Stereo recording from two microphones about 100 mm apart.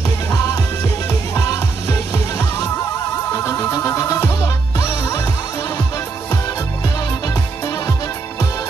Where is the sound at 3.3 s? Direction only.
25° left (ahead or behind).